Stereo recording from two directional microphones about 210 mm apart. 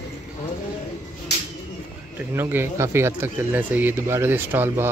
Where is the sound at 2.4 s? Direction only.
10° right (ahead or behind).